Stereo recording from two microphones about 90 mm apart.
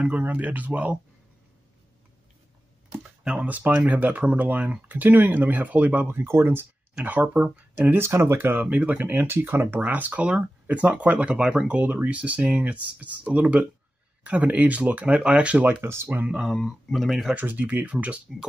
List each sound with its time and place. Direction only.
0.0 s speech: 15° right (ahead or behind)
2.9 s a sound: 10° right (ahead or behind)
3.4 s speech: 20° right (ahead or behind)
7.0 s speech: 15° right (ahead or behind)
16.3 s speech: centre (ahead or behind)
17.3 s speech: 20° right (ahead or behind)